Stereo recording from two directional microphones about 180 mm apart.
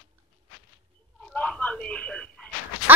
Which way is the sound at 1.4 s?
5° left (ahead or behind).